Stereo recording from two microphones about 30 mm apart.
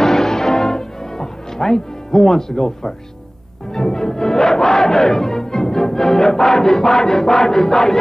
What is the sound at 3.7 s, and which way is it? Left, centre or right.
Music, centre.